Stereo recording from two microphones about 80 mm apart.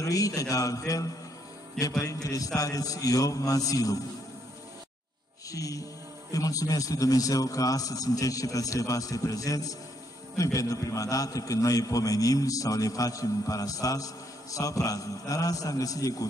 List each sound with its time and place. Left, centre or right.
0.0 s a man's voice: left
5.5 s a man's voice: left